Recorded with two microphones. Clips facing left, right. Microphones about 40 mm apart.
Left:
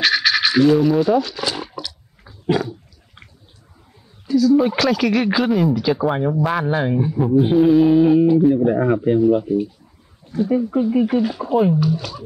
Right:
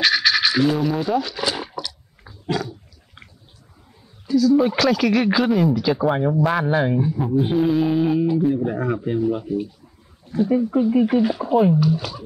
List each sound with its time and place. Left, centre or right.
0.0 s a sound: centre
2.4 s dog: left
4.3 s speech: centre
8.7 s speech: centre
9.4 s speech: centre